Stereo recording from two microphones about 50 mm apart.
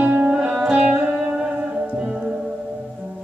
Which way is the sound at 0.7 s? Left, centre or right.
Right.